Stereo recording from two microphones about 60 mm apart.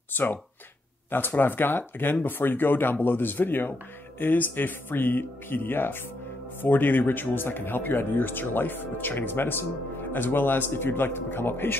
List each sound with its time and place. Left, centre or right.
0.1 s speech: left